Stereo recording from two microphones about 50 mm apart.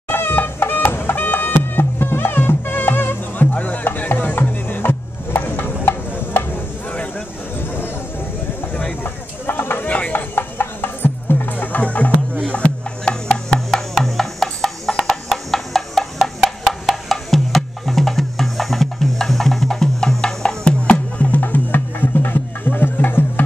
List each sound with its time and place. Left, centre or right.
0.1 s music: left
3.5 s music: left
9.0 s a sound: left
9.8 s a sound: left
10.1 s music: left
13.3 s music: centre
17.1 s music: centre
20.8 s music: left